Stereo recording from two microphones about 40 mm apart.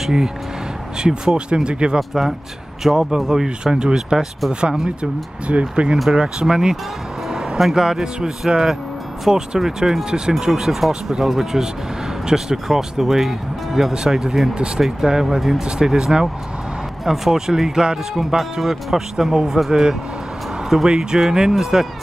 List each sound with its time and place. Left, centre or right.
0.0 s speech: centre
2.0 s speech: centre; by 5.9 s right
6.0 s speech: centre
7.2 s a sound: centre
7.7 s speech: centre
10.4 s speech: centre
13.9 s speech: centre
18.1 s speech: centre